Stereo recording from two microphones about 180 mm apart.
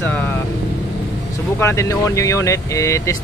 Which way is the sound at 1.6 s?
15° left (ahead or behind).